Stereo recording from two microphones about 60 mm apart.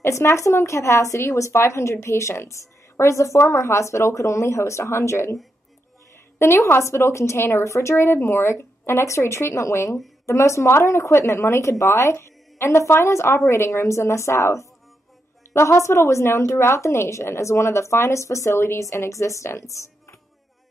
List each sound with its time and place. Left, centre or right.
0.0 s speech: left
6.3 s speech: left
19.7 s a sound: left